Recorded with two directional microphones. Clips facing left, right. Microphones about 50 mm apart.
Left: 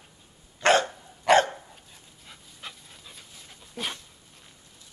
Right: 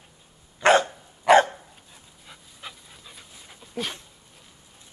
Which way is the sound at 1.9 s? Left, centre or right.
Centre.